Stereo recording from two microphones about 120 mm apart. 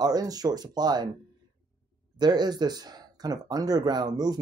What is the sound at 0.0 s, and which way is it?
Speech, 35° right (ahead or behind).